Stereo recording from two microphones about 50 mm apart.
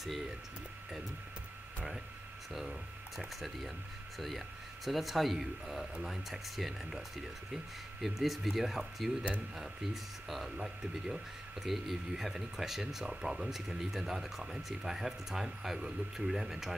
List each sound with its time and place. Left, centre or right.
3.3 s speech: centre
4.8 s speech: centre
8.0 s speech: centre
10.2 s speech: centre
11.6 s speech: centre